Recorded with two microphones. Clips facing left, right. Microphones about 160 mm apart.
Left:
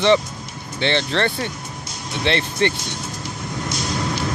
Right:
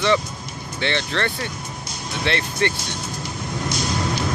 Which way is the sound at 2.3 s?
25° left (ahead or behind).